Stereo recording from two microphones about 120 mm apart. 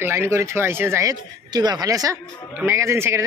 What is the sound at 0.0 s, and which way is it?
Speech, 20° right (ahead or behind).